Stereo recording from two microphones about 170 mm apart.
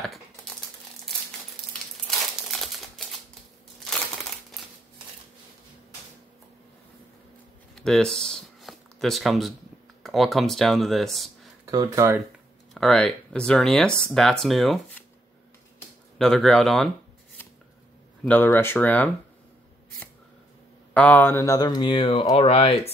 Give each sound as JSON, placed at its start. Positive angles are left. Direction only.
{"t": 0.0, "sound": "crumpling", "side_deg": 0}
{"t": 2.0, "sound": "crumpling", "side_deg": 0}
{"t": 3.8, "sound": "crushing", "side_deg": 0}
{"t": 7.7, "sound": "a sound", "side_deg": 5}
{"t": 10.0, "sound": "speech", "side_deg": 0}
{"t": 11.6, "sound": "speech", "side_deg": -20}
{"t": 12.7, "sound": "speech", "side_deg": 5}
{"t": 16.2, "sound": "speech", "side_deg": 5}
{"t": 18.2, "sound": "speech", "side_deg": 10}
{"t": 20.9, "sound": "speech", "side_deg": 10}